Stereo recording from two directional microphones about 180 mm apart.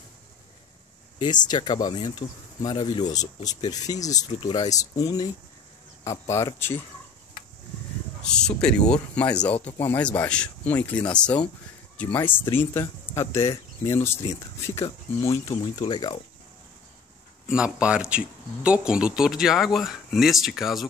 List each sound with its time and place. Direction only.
1.2 s speech: 25° left (ahead or behind)
2.0 s speech: 40° left (ahead or behind)
2.6 s speech: 25° left (ahead or behind)
8.3 s speech: 5° left (ahead or behind)
12.1 s speech: 15° left (ahead or behind)
17.5 s speech: 5° right (ahead or behind)